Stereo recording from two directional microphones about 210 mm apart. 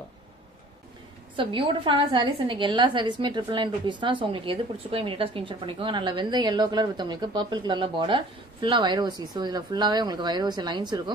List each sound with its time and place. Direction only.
1.3 s a woman's voice: 25° right (ahead or behind)